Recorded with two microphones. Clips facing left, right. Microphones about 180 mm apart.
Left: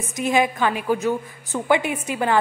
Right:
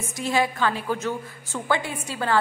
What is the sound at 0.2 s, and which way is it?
A woman's voice, 15° left (ahead or behind).